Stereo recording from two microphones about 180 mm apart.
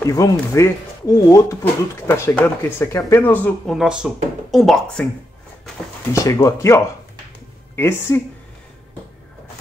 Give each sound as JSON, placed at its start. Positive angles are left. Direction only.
{"t": 0.0, "sound": "speech", "side_deg": 20}
{"t": 3.4, "sound": "speech", "side_deg": 0}
{"t": 6.1, "sound": "speech", "side_deg": 15}